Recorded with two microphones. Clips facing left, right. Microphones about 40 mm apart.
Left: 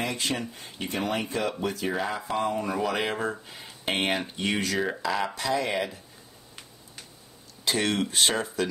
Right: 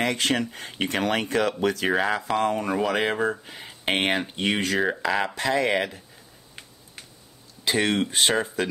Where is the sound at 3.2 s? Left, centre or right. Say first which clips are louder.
Right 5 dB; right.